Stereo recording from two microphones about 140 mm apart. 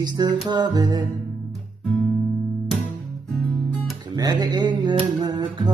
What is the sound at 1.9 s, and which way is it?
Guitar, centre (ahead or behind).